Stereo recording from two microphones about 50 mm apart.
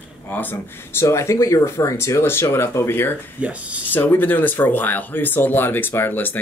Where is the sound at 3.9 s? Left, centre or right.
Left.